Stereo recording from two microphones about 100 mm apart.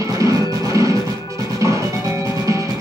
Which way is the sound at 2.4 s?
30° right (ahead or behind).